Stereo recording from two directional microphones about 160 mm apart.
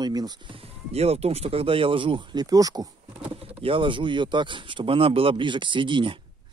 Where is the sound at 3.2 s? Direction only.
35° right (ahead or behind).